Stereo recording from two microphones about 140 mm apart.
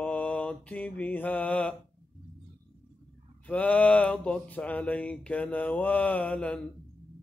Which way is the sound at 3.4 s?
10° left (ahead or behind).